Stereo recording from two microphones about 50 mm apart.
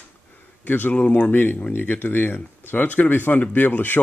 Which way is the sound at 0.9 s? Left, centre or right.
Left.